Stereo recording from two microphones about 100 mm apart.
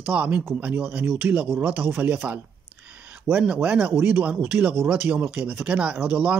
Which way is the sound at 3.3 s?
10° right (ahead or behind).